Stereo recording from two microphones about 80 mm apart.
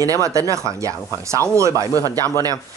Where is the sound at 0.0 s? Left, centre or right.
Right.